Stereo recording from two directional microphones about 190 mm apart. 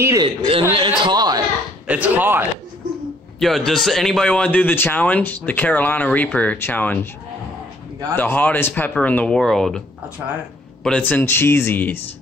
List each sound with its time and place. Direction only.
0.0 s speech: 15° right (ahead or behind)
0.5 s a man's voice: 30° right (ahead or behind)
1.9 s speech: 5° right (ahead or behind)
3.3 s a man's voice: centre (ahead or behind)
8.2 s a man's voice: 10° left (ahead or behind)